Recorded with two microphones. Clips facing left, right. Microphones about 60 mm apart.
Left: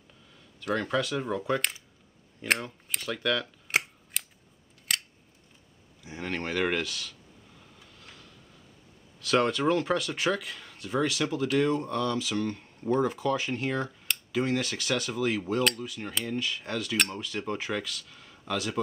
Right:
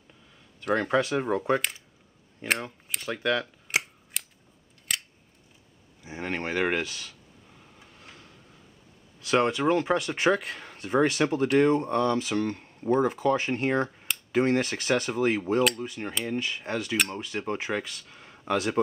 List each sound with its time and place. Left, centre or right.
0.7 s speech: right
3.6 s scissors: centre
6.0 s speech: centre
7.8 s a sound: right
9.2 s speech: centre
10.1 s speech: right
16.9 s speech: centre
17.2 s speech: right